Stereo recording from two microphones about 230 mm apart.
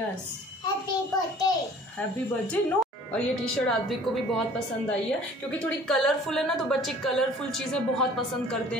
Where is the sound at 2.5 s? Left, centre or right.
Centre.